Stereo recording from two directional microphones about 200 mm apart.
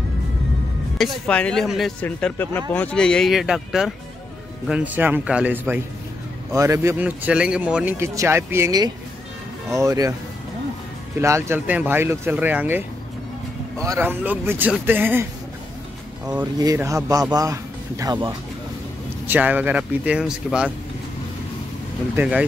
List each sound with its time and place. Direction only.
0.9 s speech: 5° left (ahead or behind); by 10.1 s 15° right (ahead or behind)
11.1 s speech: 15° right (ahead or behind)
16.5 s speech: 15° right (ahead or behind)
19.2 s speech: 10° right (ahead or behind)
22.1 s speech: 10° right (ahead or behind)